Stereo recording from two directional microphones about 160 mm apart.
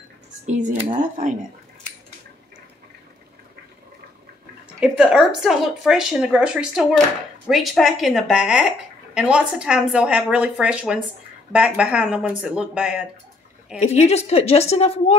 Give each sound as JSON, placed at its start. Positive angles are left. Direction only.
{"t": 0.5, "sound": "speech", "side_deg": -50}
{"t": 4.7, "sound": "a woman's voice", "side_deg": -5}
{"t": 13.7, "sound": "a woman's voice", "side_deg": 45}